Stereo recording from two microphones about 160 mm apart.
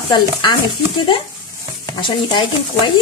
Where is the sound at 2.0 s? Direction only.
30° left (ahead or behind).